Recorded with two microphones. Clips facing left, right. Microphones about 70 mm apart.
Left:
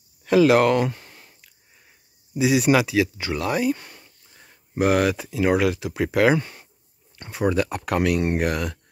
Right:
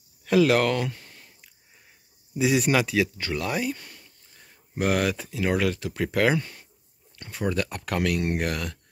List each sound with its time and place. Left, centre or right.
0.2 s speech: centre
2.3 s speech: centre
3.7 s a sound: left
4.8 s speech: centre
6.3 s speech: left
7.2 s speech: centre